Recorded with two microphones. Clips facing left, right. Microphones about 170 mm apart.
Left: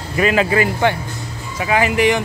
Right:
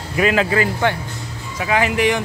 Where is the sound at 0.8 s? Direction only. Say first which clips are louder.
Left 2 dB; 15° left (ahead or behind).